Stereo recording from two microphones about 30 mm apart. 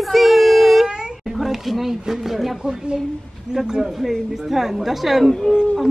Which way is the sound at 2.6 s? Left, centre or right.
Centre.